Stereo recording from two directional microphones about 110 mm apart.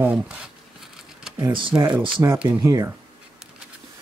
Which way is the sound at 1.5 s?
45° right (ahead or behind).